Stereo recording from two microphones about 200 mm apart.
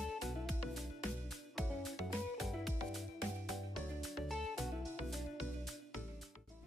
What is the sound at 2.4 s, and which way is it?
Music, centre (ahead or behind).